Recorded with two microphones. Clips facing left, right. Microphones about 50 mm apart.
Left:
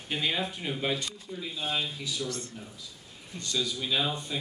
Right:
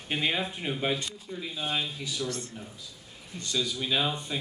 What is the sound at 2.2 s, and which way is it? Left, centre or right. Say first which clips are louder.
Speech: right 1 dB; right.